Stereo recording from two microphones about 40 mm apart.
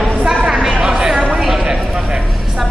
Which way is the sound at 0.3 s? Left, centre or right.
Centre.